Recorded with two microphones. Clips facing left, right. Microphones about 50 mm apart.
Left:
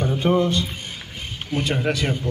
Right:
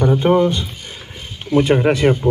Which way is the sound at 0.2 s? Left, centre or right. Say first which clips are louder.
Right 5 dB; right.